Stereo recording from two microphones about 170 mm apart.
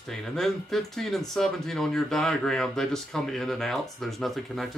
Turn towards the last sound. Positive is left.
turn(degrees=0)  # may be behind; listen again after turning